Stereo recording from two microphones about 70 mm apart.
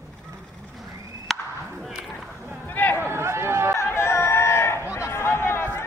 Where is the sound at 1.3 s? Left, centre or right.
Centre.